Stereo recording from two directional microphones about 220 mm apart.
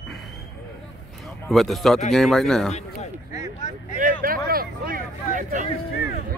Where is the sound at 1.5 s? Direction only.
Centre (ahead or behind).